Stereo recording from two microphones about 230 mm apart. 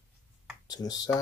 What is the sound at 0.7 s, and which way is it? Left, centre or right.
Speech, centre.